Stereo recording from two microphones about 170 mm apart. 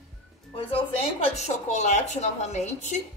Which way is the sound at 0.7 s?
35° left (ahead or behind).